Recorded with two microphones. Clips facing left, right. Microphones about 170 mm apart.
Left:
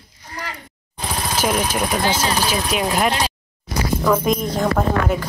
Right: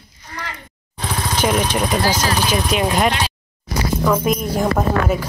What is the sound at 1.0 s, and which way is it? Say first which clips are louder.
Vehicle: right 2 dB; 5° left (ahead or behind).